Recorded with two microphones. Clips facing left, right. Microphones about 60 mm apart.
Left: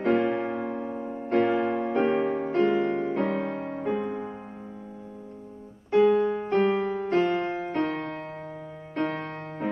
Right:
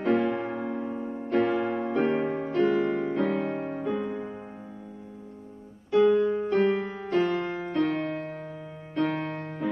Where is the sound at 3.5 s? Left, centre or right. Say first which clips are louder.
Right 1 dB; right.